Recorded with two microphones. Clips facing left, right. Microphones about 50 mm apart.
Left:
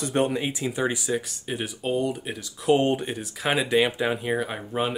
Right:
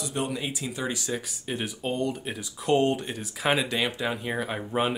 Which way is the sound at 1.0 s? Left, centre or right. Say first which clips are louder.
Left 4 dB; centre.